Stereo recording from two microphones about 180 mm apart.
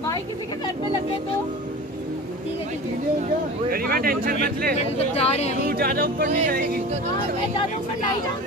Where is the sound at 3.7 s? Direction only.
55° right (ahead or behind).